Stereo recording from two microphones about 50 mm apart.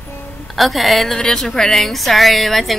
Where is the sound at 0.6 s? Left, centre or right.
Centre.